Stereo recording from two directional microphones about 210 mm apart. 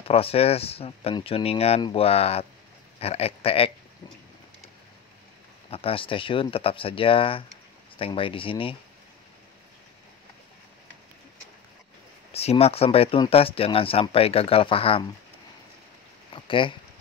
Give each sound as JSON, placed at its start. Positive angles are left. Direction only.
{"t": 0.1, "sound": "speech", "side_deg": 30}
{"t": 5.7, "sound": "speech", "side_deg": 25}
{"t": 12.3, "sound": "speech", "side_deg": 30}
{"t": 16.3, "sound": "speech", "side_deg": 25}